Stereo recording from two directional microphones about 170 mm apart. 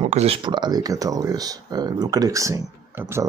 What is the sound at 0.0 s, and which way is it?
Speech, 35° right (ahead or behind).